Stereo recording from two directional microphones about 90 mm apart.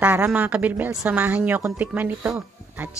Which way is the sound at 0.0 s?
20° right (ahead or behind).